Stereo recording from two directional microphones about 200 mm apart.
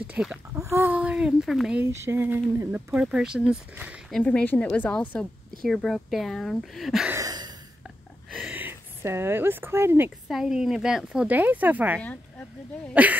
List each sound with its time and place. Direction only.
0.0 s speech: 5° right (ahead or behind)
4.2 s a woman's voice: 5° left (ahead or behind)
7.2 s a sound: 20° right (ahead or behind)
8.3 s speech: 5° right (ahead or behind)